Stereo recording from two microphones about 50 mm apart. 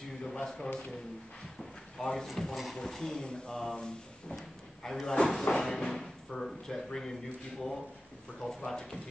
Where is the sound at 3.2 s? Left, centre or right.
Centre.